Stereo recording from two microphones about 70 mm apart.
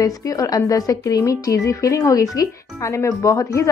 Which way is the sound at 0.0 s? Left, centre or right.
Left.